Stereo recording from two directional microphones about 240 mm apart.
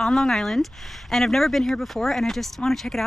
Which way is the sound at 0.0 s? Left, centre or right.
Centre.